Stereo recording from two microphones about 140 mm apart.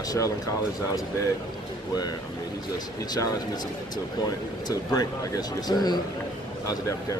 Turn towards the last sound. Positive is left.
turn(degrees=30)  # may be behind; listen again after turning